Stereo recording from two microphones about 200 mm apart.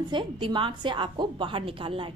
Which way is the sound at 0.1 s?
25° right (ahead or behind).